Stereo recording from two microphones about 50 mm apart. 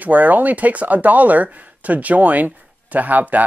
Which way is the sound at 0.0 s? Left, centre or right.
Right.